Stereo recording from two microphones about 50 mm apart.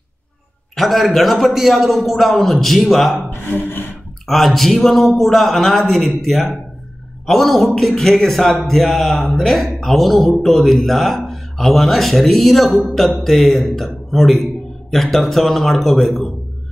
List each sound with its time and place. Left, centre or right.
0.7 s speech: centre
3.2 s speech: left
4.3 s speech: centre